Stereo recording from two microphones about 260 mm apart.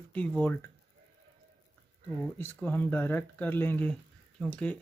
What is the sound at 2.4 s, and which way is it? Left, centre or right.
Speech, centre.